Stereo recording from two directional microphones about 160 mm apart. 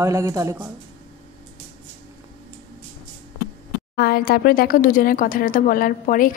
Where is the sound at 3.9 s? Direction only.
75° left (ahead or behind).